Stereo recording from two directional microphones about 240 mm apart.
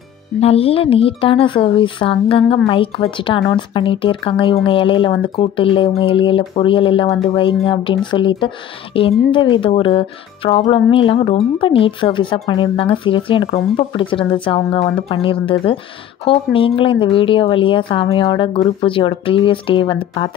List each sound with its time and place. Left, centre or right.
0.4 s speech: left